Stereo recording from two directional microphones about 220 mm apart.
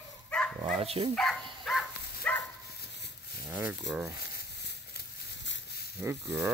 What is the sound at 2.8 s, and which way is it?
Dog, 50° left (ahead or behind).